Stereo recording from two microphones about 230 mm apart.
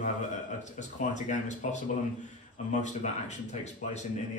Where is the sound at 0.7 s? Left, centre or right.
Left.